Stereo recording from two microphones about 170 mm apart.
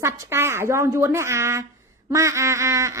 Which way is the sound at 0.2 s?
15° right (ahead or behind).